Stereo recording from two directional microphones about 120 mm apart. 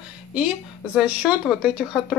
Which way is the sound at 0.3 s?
10° right (ahead or behind).